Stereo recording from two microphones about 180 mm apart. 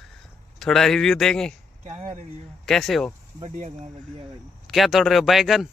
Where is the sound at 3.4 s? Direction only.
40° right (ahead or behind).